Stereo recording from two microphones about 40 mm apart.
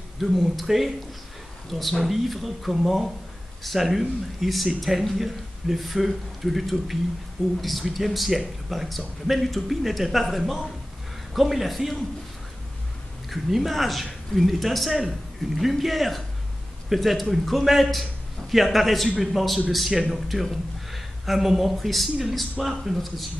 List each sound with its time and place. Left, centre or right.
0.2 s a man's voice: centre
13.3 s a man's voice: centre